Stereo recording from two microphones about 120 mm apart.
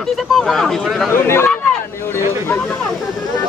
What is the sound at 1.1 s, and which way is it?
Speech, 20° left (ahead or behind).